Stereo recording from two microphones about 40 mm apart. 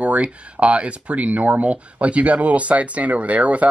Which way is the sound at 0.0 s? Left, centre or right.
Right.